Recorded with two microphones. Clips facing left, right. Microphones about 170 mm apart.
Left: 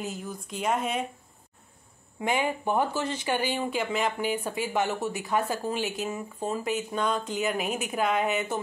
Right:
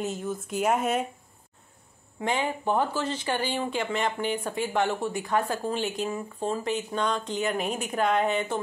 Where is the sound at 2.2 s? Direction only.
10° left (ahead or behind).